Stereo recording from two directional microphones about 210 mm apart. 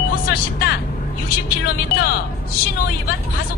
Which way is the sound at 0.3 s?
45° left (ahead or behind).